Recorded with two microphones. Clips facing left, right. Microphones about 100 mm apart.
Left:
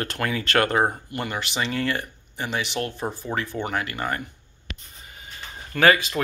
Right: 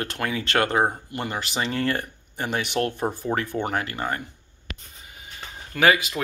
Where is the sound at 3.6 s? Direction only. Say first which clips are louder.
Right 1 dB; 40° right (ahead or behind).